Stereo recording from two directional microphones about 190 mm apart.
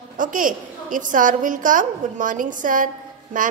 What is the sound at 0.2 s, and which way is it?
A woman's voice, 45° right (ahead or behind).